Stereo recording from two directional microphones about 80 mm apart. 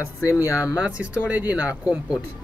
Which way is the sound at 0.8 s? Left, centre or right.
Centre.